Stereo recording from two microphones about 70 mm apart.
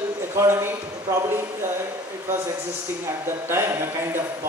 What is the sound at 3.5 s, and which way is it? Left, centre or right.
Speech, right.